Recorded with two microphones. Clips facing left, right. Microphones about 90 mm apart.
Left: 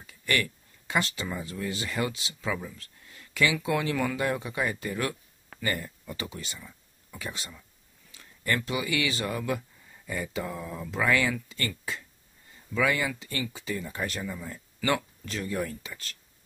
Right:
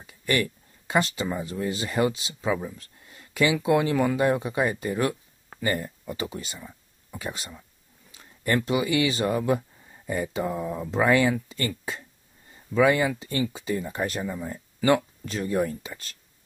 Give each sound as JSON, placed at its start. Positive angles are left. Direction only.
{"t": 0.0, "sound": "speech", "side_deg": -25}